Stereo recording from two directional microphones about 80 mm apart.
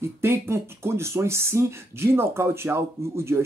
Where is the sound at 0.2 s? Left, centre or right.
Right.